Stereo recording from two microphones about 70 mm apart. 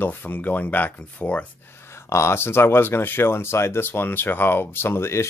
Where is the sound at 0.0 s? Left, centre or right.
Left.